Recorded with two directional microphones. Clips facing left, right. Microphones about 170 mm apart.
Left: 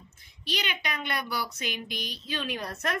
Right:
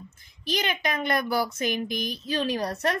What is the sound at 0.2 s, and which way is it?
A woman's voice, 45° right (ahead or behind).